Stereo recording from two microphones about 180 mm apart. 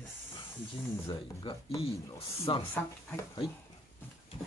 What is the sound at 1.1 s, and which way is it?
Speech, 30° left (ahead or behind).